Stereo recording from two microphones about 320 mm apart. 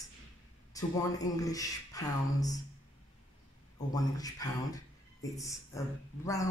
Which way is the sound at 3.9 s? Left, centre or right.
Centre.